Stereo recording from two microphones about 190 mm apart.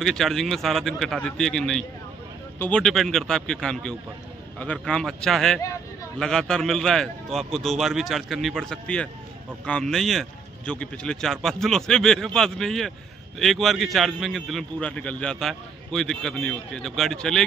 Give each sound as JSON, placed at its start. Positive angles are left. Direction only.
{"t": 0.0, "sound": "a man's voice", "side_deg": 0}